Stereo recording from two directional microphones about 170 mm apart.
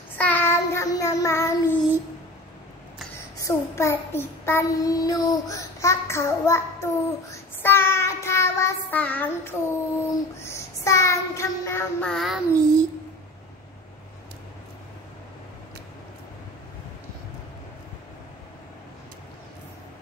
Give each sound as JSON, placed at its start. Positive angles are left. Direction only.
{"t": 0.2, "sound": "child singing", "side_deg": 10}
{"t": 3.4, "sound": "child singing", "side_deg": 15}
{"t": 12.1, "sound": "child singing", "side_deg": 0}